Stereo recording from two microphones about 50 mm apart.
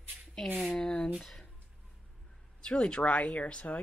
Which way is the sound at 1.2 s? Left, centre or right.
Centre.